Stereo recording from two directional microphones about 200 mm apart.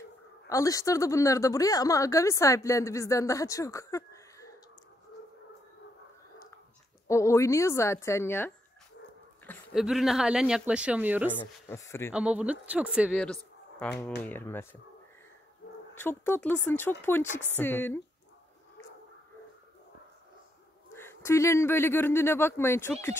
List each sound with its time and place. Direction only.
0.5 s a woman's voice: 15° left (ahead or behind)
7.1 s a woman's voice: 15° left (ahead or behind)
9.8 s a woman's voice: centre (ahead or behind)
11.3 s a woman's voice: 15° left (ahead or behind)
12.1 s speech: 5° right (ahead or behind)
13.1 s a woman's voice: 5° left (ahead or behind)
15.9 s a woman's voice: 10° left (ahead or behind)
20.9 s a woman's voice: 10° left (ahead or behind)